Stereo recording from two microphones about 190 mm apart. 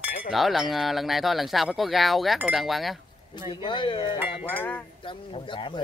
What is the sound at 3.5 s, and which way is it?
Speech, 25° left (ahead or behind).